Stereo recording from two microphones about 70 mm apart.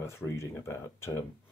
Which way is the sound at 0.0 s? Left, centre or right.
Left.